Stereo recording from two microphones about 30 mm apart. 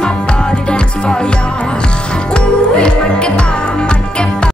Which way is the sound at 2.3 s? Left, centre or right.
Left.